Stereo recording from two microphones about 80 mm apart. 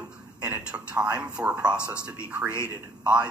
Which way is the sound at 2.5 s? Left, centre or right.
Left.